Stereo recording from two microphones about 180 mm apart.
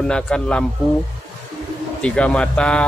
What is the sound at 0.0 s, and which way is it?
Speech, 5° left (ahead or behind).